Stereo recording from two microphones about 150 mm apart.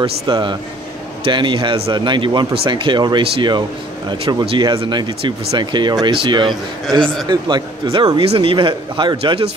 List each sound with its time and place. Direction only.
0.0 s a man's voice: 30° right (ahead or behind)